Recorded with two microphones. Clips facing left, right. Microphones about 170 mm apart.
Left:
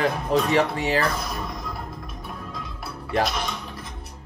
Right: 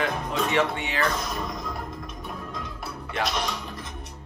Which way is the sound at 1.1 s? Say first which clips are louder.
Even; centre (ahead or behind).